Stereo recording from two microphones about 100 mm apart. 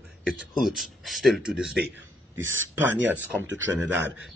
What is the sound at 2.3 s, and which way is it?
A man's voice, 25° right (ahead or behind).